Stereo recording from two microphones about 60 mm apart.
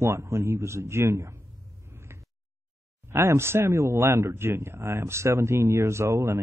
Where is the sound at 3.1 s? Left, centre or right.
Right.